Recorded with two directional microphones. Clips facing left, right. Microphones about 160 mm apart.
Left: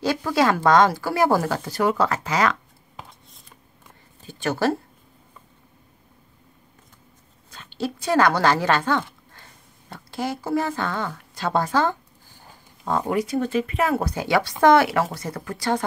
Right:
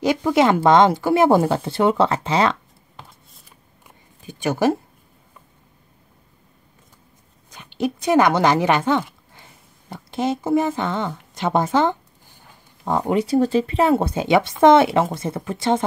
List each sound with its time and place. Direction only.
0.0 s speech: 20° right (ahead or behind)
3.0 s a sound: centre (ahead or behind); by 4.7 s 15° right (ahead or behind)
7.5 s speech: 15° right (ahead or behind)